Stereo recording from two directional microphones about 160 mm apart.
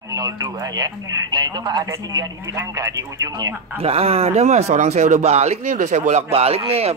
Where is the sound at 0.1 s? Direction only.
25° right (ahead or behind).